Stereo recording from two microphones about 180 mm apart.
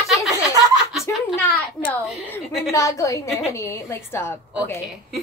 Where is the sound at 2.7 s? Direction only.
15° left (ahead or behind).